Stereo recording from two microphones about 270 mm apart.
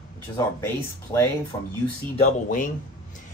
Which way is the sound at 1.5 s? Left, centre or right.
Left.